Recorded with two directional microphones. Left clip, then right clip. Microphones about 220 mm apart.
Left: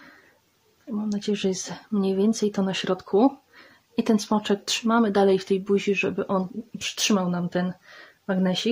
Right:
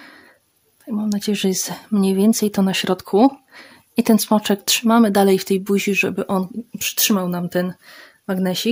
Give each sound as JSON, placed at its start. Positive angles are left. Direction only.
{"t": 0.8, "sound": "speech", "side_deg": -50}